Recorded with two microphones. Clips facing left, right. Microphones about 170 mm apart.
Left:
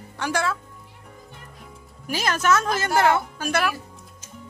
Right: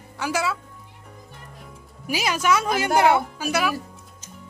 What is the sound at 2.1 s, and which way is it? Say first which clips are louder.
A woman's voice: even; 10° right (ahead or behind).